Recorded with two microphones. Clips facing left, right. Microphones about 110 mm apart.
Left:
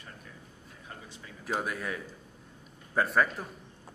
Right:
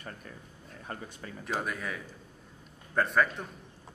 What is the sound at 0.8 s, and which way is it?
Speech, 55° right (ahead or behind).